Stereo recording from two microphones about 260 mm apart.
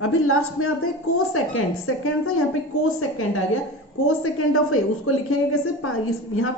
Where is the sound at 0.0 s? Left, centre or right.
Left.